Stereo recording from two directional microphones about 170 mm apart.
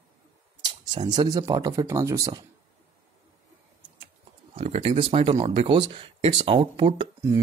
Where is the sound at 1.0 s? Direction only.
20° right (ahead or behind).